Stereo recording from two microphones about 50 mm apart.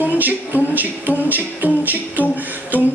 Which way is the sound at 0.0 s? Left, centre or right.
Right.